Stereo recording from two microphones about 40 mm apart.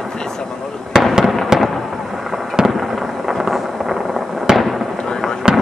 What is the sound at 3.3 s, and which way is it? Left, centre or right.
Vehicle, centre.